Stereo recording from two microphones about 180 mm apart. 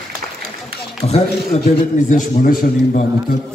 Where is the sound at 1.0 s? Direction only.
35° left (ahead or behind).